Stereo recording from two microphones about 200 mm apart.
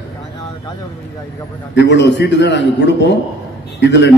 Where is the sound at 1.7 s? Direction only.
60° left (ahead or behind).